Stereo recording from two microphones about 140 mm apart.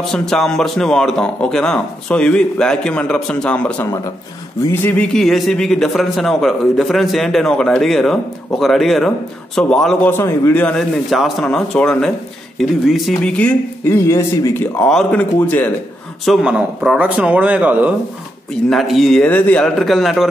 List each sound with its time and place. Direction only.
0.1 s a man's voice: 5° left (ahead or behind)
3.8 s a man's voice: 20° left (ahead or behind); by 9.9 s 5° left (ahead or behind)
10.0 s a man's voice: 15° left (ahead or behind)
16.3 s speech: 5° right (ahead or behind)
18.7 s a man's voice: centre (ahead or behind)
19.2 s a man's voice: 10° left (ahead or behind)